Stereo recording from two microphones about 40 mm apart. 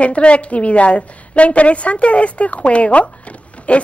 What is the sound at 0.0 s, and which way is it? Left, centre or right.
A woman's voice, left.